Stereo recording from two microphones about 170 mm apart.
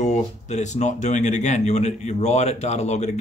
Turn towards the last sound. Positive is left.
turn(degrees=40)  # may be behind; listen again after turning